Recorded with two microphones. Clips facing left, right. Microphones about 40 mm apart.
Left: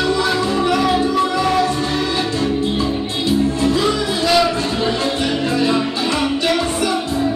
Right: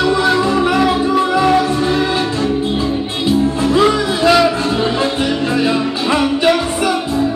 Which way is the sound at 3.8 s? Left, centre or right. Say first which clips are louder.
Right 5 dB; right.